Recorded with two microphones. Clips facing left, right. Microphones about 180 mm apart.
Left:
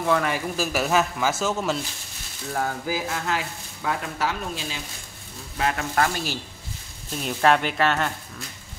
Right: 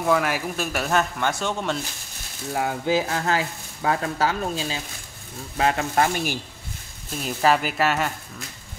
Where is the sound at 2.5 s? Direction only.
15° right (ahead or behind).